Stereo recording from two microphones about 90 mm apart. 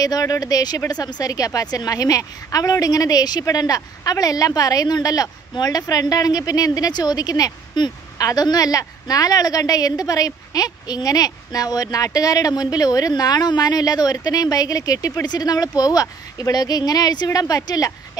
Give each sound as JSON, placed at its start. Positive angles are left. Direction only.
{"t": 0.0, "sound": "speech", "side_deg": 40}